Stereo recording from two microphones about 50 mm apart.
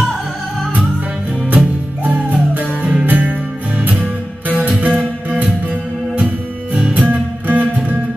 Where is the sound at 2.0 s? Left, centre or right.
Right.